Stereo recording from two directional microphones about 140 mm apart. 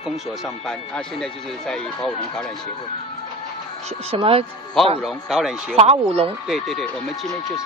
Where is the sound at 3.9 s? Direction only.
45° right (ahead or behind).